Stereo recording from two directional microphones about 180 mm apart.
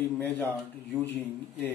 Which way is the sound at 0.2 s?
10° left (ahead or behind).